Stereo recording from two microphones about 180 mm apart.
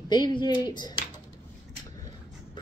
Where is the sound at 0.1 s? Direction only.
25° left (ahead or behind).